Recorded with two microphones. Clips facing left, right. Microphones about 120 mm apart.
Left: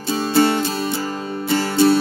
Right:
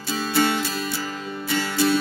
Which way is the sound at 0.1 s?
35° left (ahead or behind).